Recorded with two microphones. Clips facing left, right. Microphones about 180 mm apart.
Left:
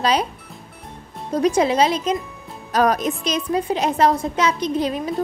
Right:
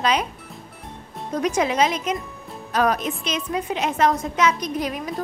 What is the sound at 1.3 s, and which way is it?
A woman's voice, 30° left (ahead or behind).